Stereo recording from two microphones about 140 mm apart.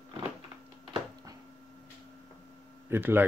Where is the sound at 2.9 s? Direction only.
15° right (ahead or behind).